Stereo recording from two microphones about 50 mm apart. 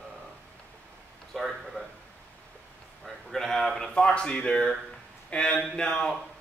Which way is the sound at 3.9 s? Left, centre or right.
Centre.